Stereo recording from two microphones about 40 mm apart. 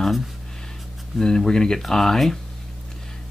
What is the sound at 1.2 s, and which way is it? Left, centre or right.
Speech, centre.